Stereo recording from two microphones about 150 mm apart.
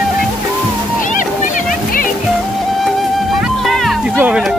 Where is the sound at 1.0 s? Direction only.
60° left (ahead or behind).